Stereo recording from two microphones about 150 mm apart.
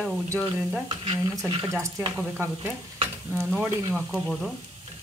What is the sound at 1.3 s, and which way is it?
Speech, 25° right (ahead or behind).